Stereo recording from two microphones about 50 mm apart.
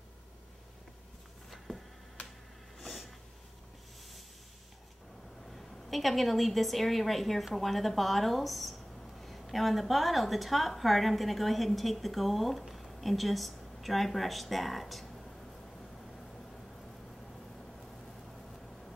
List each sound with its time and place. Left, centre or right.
2.8 s snort: centre
5.4 s a woman's voice: centre